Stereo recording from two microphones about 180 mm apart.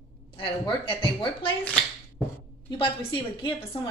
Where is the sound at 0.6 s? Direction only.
30° left (ahead or behind).